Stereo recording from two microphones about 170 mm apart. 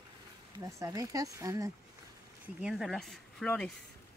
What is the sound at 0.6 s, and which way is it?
Speech, 20° right (ahead or behind).